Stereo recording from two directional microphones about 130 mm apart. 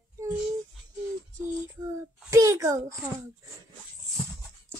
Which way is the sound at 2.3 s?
25° right (ahead or behind).